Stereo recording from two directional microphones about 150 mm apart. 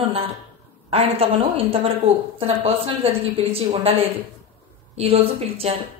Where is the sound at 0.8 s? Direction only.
40° right (ahead or behind).